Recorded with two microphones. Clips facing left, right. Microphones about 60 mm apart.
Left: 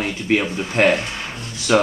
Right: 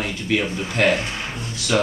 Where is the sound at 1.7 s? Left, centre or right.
Left.